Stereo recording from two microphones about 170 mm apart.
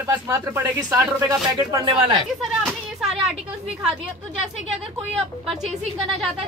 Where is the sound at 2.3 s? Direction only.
Centre (ahead or behind).